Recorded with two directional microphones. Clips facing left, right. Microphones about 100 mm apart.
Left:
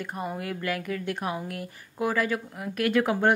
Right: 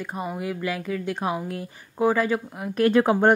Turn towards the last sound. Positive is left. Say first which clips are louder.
# right 5 dB
turn(degrees=-35)  # may be behind; listen again after turning